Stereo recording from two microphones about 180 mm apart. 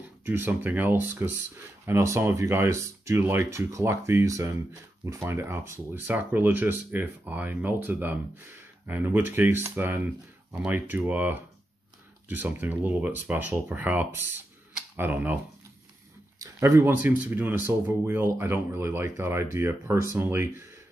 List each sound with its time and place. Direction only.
0.2 s speech: 10° right (ahead or behind)
16.3 s speech: 15° right (ahead or behind)